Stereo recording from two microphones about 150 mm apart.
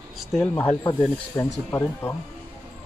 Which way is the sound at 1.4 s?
20° left (ahead or behind).